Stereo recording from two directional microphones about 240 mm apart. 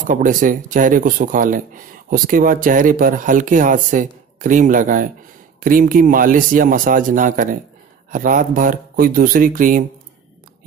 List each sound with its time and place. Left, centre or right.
0.0 s speech: right